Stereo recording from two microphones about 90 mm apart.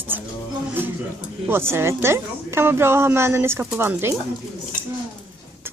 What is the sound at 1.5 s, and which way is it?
A woman's voice, 25° right (ahead or behind).